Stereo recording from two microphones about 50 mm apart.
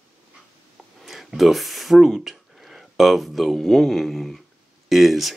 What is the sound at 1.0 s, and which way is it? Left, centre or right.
Speech, centre.